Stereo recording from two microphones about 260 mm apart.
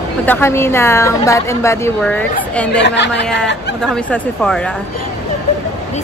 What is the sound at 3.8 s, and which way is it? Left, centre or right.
Speech, centre.